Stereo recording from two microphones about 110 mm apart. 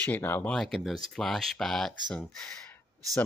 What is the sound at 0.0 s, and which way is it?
Speech, 20° left (ahead or behind).